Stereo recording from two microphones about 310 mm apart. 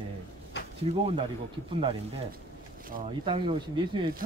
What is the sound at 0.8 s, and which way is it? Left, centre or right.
Speech, centre.